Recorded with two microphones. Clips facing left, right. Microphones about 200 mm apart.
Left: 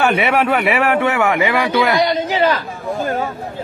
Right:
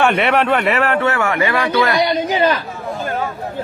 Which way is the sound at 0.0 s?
5° left (ahead or behind).